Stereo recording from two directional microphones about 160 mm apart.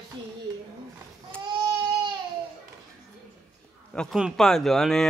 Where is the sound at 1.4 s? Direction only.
30° right (ahead or behind).